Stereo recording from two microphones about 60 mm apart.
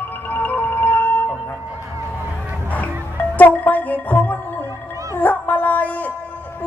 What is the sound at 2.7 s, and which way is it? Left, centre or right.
Music, left.